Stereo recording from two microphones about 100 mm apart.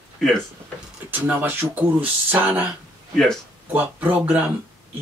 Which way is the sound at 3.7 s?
15° right (ahead or behind).